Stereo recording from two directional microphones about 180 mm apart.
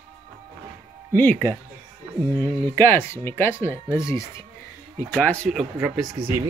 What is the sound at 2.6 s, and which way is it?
Speech, 10° left (ahead or behind).